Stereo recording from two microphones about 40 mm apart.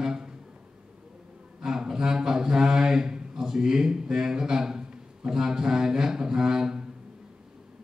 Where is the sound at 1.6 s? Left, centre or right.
Centre.